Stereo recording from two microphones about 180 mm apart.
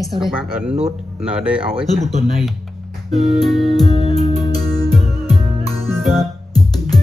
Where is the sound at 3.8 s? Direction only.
35° right (ahead or behind).